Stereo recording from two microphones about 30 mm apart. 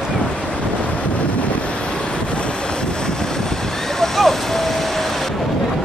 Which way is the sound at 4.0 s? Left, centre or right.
Centre.